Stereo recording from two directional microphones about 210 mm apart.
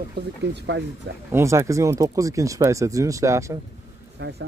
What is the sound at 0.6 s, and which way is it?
Speech, 55° right (ahead or behind).